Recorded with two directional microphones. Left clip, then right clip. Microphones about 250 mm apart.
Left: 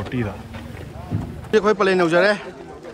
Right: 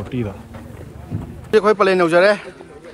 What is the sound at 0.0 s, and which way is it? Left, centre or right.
Speech, centre.